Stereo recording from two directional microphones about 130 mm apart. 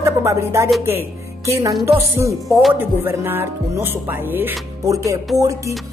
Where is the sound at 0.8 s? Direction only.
20° right (ahead or behind).